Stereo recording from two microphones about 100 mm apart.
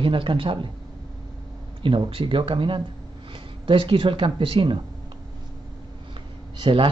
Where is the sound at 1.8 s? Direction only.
60° right (ahead or behind).